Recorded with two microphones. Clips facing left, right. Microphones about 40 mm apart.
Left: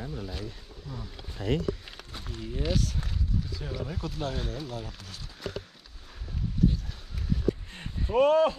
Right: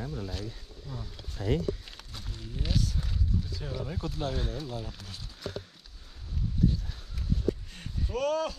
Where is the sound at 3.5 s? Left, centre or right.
Centre.